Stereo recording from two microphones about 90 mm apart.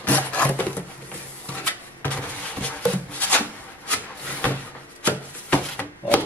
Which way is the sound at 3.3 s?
15° left (ahead or behind).